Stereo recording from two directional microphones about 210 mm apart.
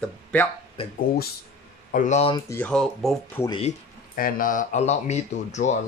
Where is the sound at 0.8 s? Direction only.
25° left (ahead or behind).